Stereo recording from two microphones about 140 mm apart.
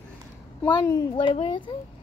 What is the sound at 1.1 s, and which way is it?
Speech, 40° left (ahead or behind).